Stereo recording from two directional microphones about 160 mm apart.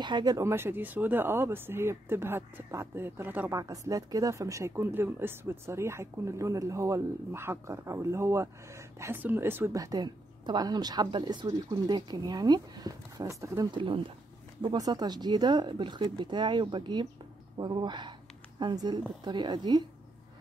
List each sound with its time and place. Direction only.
0.0 s speech: 25° right (ahead or behind)
13.7 s speech: 35° right (ahead or behind)